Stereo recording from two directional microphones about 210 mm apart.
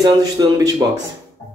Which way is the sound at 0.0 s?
15° right (ahead or behind).